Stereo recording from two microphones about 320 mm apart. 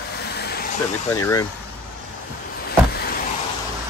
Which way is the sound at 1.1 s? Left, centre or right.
Centre.